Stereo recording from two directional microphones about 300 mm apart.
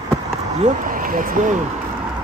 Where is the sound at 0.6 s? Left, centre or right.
Right.